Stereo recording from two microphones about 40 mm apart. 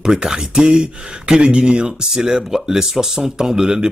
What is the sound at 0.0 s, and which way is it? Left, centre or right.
Speech, centre.